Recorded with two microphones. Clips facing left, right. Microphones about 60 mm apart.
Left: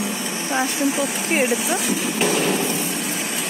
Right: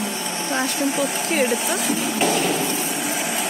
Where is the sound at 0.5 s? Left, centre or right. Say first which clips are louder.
Left 1 dB; centre.